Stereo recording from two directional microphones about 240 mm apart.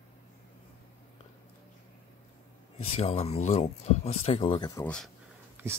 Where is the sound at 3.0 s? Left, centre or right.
Left; by 5.1 s centre.